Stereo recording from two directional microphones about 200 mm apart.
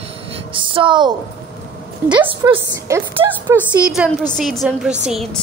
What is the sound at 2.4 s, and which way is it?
A woman's voice, 15° right (ahead or behind).